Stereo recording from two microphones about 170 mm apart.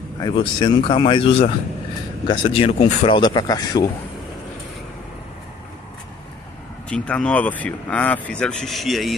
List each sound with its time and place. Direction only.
0.2 s speech: 25° left (ahead or behind)
3.2 s speech: 25° left (ahead or behind)
6.9 s speech: 5° left (ahead or behind)